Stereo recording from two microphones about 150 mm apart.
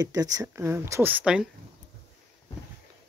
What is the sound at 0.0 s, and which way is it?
Speech, 25° right (ahead or behind).